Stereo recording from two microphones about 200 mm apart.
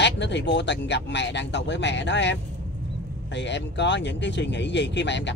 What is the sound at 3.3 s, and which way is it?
Speech, 60° left (ahead or behind).